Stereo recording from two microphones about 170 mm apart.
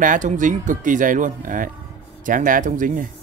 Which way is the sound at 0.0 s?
50° right (ahead or behind).